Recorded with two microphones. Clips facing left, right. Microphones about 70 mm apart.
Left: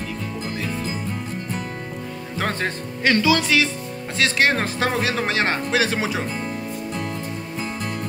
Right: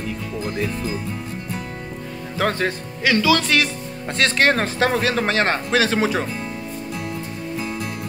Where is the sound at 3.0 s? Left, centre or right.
Left.